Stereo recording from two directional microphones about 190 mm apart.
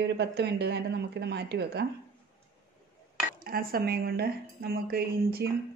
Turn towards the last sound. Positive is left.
turn(degrees=-55)  # may be behind; listen again after turning